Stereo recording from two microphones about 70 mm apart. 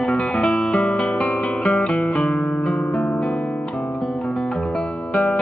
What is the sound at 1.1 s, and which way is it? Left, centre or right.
Music, centre.